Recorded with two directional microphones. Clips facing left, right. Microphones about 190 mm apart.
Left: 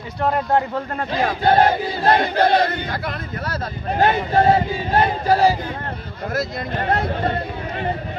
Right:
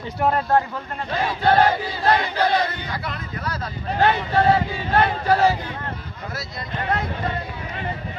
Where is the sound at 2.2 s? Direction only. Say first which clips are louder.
Left 4 dB; 55° left (ahead or behind); by 5.8 s 35° left (ahead or behind).